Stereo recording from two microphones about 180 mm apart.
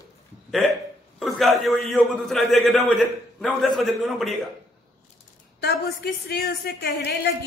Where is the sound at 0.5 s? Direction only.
Centre (ahead or behind).